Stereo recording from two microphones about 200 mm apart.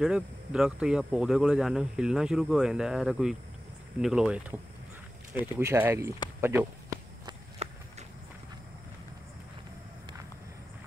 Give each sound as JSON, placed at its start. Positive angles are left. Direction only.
{"t": 0.0, "sound": "speech", "side_deg": -5}
{"t": 7.2, "sound": "walk", "side_deg": -30}